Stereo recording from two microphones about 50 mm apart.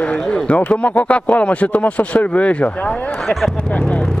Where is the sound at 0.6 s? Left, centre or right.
Left.